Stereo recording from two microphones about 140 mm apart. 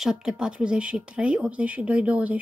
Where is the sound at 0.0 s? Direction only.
5° right (ahead or behind).